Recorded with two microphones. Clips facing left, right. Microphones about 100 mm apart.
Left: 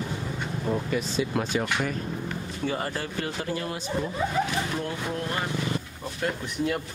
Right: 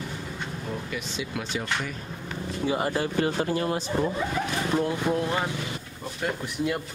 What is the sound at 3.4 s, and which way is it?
Speech, 30° right (ahead or behind).